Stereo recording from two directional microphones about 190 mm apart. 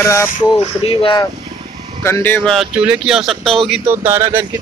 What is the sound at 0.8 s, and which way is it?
Speech, 25° left (ahead or behind).